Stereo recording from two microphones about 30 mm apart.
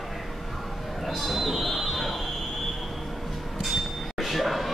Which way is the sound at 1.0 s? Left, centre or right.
Centre.